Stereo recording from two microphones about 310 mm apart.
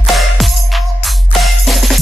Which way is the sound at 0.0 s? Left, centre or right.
Centre.